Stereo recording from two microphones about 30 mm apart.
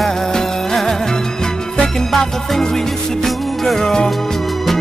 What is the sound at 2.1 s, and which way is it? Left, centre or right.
Music, centre.